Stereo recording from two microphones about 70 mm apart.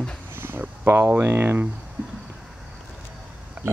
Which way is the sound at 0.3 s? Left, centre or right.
Right.